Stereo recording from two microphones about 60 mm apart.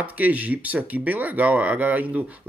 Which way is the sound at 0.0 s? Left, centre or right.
Right.